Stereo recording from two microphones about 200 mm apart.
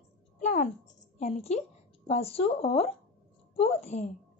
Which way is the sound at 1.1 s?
30° left (ahead or behind).